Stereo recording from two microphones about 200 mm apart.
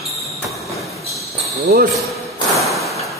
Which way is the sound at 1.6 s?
50° right (ahead or behind).